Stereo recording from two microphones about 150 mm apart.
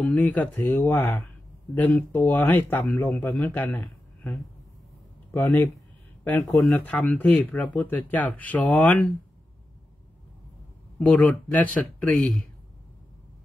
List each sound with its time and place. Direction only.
0.0 s speech: 10° left (ahead or behind)
5.3 s speech: 15° left (ahead or behind)
11.0 s speech: 5° left (ahead or behind)